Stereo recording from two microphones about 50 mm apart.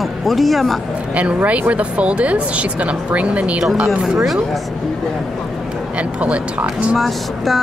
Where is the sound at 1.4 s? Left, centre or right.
Right.